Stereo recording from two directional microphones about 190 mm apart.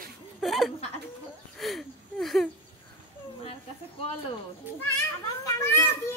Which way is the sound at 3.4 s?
30° left (ahead or behind).